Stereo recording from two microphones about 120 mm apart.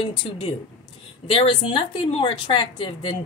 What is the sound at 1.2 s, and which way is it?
A woman's voice, 50° left (ahead or behind).